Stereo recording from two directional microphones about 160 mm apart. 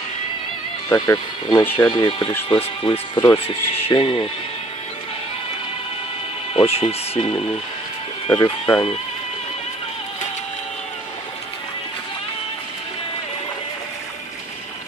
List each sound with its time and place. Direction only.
0.8 s speech: 20° left (ahead or behind)
1.9 s speech: 30° left (ahead or behind)
6.5 s speech: 40° left (ahead or behind)
8.3 s speech: 30° left (ahead or behind)